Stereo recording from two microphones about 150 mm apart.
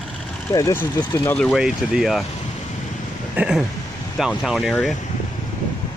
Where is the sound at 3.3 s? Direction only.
5° right (ahead or behind).